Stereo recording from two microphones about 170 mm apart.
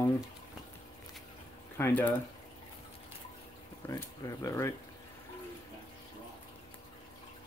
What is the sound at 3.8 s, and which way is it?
Speech, 20° left (ahead or behind).